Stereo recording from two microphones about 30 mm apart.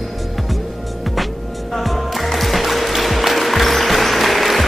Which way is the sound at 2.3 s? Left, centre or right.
Centre.